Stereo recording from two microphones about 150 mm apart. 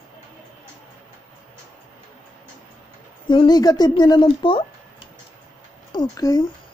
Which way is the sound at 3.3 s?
30° left (ahead or behind).